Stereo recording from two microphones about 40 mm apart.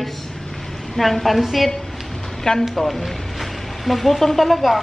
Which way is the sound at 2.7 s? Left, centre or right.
Centre.